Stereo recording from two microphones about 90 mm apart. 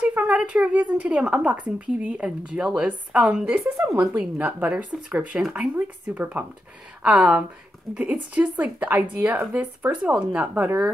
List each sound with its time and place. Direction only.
0.0 s a woman's voice: 15° right (ahead or behind)
3.6 s speech: 30° right (ahead or behind)
4.0 s a woman's voice: 10° right (ahead or behind)